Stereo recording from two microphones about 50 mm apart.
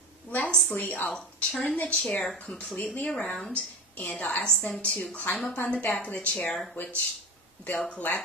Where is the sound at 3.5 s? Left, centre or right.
Left.